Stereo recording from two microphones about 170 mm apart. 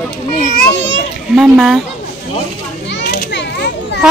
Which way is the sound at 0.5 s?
75° left (ahead or behind).